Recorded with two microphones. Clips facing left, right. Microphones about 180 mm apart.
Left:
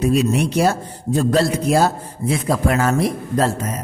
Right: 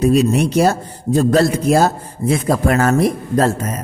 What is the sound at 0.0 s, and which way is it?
A man's voice, 40° right (ahead or behind).